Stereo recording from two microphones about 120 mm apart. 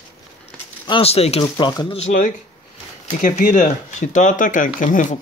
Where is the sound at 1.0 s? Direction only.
55° left (ahead or behind).